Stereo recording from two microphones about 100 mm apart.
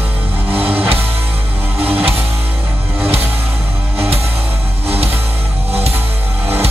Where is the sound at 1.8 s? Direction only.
75° right (ahead or behind).